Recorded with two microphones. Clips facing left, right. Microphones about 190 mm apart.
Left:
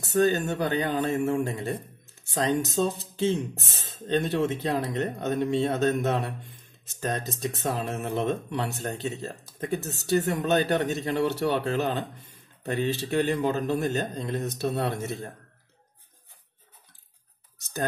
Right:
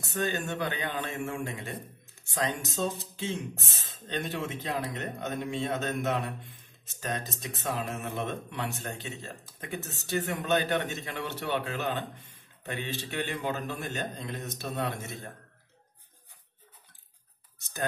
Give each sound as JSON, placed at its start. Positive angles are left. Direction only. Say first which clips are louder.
{"t": 0.0, "sound": "speech", "louder": "left 9 dB", "side_deg": 35}